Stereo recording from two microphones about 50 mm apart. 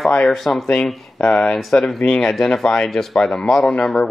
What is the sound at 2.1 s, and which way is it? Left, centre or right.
Speech, centre.